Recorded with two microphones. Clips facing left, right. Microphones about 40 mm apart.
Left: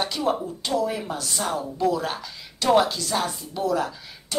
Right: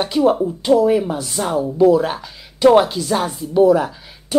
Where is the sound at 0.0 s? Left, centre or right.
Centre.